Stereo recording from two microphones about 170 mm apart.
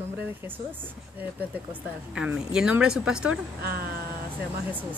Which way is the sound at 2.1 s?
5° right (ahead or behind).